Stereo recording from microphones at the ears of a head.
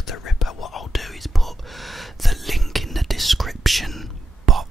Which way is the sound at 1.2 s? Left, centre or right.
Centre.